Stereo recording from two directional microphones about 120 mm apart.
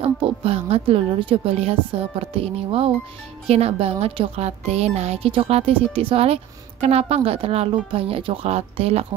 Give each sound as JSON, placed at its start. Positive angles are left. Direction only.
{"t": 0.0, "sound": "a woman's voice", "side_deg": -50}
{"t": 5.3, "sound": "a woman's voice", "side_deg": -50}